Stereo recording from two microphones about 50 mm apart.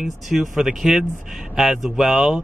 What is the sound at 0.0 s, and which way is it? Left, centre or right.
Speech, centre.